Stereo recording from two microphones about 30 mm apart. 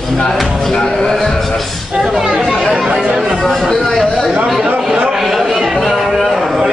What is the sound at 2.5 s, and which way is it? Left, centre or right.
Speech, centre.